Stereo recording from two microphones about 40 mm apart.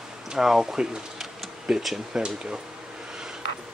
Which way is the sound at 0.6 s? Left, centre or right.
Centre.